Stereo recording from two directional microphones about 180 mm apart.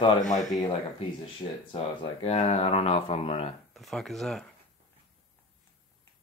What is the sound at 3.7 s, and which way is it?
Speech, centre (ahead or behind).